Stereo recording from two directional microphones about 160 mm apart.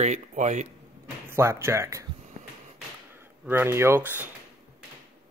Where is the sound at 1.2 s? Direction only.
15° right (ahead or behind).